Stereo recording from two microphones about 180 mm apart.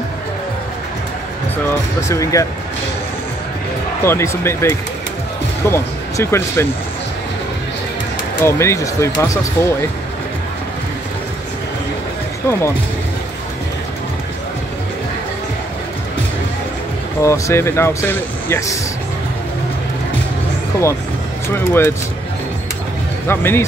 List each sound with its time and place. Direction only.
1.7 s speech: 15° left (ahead or behind)
4.0 s speech: 15° left (ahead or behind)
8.4 s speech: 15° left (ahead or behind)
17.2 s speech: 15° left (ahead or behind)
21.5 s speech: 15° left (ahead or behind)
23.2 s speech: 10° left (ahead or behind)